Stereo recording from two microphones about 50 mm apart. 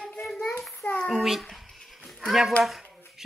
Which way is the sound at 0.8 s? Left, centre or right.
Left.